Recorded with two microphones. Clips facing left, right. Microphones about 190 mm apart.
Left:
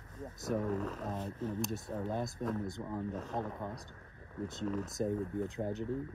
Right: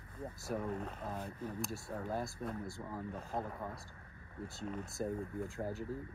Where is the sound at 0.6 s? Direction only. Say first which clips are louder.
Left 5 dB; 40° left (ahead or behind).